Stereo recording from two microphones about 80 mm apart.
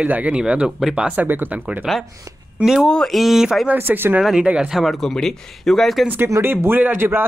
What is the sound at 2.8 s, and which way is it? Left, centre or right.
Speech, centre.